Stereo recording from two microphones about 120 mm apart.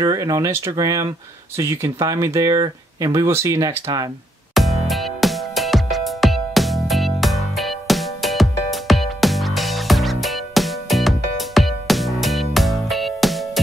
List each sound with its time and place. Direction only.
0.0 s speech: 30° right (ahead or behind)
4.6 s music: centre (ahead or behind)